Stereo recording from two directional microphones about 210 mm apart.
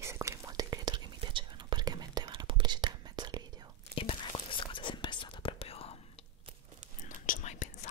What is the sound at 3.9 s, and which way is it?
Whispering, 25° left (ahead or behind).